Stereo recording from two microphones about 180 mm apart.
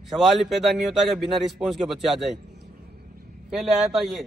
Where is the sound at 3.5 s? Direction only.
Centre (ahead or behind).